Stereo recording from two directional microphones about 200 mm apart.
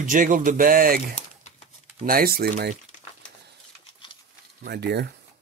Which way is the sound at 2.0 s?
50° right (ahead or behind).